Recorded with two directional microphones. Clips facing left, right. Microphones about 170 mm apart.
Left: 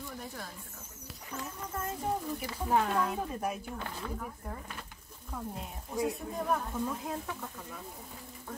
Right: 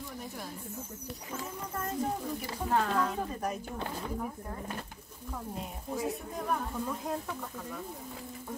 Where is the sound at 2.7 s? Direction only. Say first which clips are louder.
Even; 10° left (ahead or behind).